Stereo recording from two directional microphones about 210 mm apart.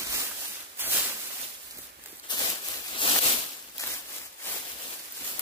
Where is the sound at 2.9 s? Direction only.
25° left (ahead or behind).